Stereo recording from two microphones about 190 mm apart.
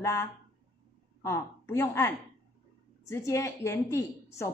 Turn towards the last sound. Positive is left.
turn(degrees=15)  # may be behind; listen again after turning